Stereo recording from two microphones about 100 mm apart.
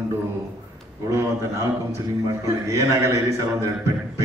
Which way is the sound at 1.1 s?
30° right (ahead or behind).